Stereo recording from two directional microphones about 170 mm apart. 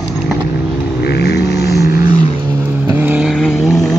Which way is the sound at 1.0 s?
75° left (ahead or behind).